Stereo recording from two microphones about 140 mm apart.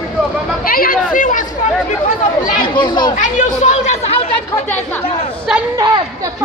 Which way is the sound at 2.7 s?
30° left (ahead or behind).